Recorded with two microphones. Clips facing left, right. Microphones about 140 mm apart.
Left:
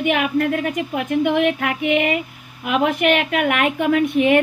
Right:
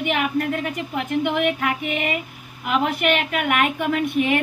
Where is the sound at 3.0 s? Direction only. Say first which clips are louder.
Left 4 dB; 50° left (ahead or behind).